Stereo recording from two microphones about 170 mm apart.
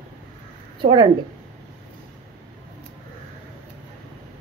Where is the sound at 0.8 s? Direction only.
30° right (ahead or behind).